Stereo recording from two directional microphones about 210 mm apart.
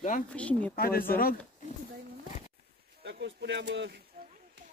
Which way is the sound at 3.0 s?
55° right (ahead or behind).